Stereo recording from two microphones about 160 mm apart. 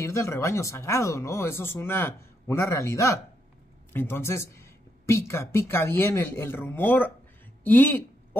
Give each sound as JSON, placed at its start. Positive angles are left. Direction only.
{"t": 0.0, "sound": "speech", "side_deg": 20}